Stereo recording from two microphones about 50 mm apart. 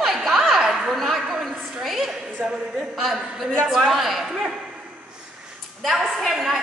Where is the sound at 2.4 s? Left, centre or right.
Right.